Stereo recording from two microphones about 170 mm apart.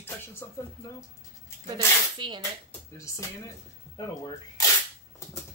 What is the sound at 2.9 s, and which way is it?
Speech, 20° left (ahead or behind).